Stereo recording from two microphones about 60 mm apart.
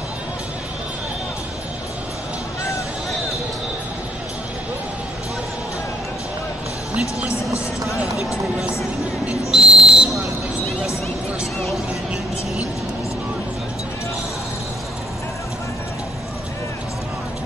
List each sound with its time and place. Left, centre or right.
6.9 s music: right
9.5 s whistle: centre